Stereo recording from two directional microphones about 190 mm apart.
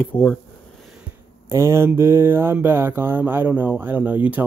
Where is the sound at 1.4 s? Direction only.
15° right (ahead or behind).